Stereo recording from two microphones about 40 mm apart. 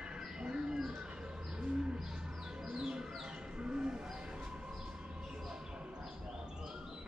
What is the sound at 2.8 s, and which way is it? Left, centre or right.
Bird, centre.